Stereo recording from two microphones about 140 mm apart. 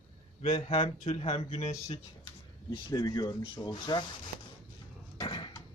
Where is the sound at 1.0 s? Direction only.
55° left (ahead or behind).